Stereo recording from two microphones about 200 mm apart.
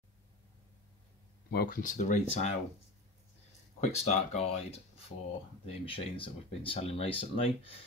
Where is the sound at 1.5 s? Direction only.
50° left (ahead or behind).